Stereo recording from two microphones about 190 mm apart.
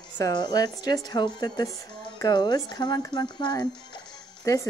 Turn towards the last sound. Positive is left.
turn(degrees=20)  # may be behind; listen again after turning